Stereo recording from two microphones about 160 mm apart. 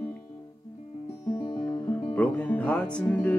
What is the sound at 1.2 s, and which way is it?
Music, 30° left (ahead or behind).